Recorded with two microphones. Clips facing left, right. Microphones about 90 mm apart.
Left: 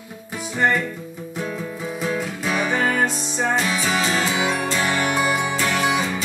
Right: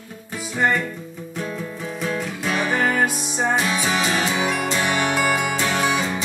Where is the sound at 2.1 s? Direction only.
Centre (ahead or behind).